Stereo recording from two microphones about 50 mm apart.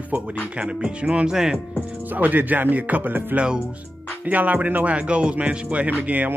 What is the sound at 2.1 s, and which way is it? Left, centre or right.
Speech, right.